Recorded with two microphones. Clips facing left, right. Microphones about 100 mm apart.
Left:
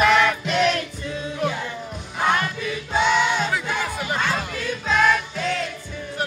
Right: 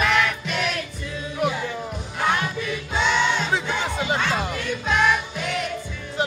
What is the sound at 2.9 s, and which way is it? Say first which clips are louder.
Music: left 2 dB; 10° left (ahead or behind).